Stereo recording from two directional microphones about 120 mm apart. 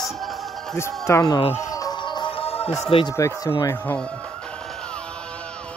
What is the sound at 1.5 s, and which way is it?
Music, 30° left (ahead or behind).